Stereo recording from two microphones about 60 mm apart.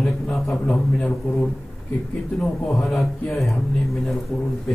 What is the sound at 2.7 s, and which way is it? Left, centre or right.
Speech, centre.